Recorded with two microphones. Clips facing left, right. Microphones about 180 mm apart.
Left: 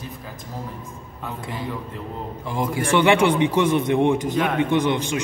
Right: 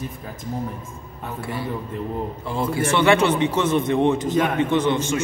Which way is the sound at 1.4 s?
15° left (ahead or behind).